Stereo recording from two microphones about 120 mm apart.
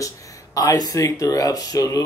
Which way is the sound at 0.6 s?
30° left (ahead or behind).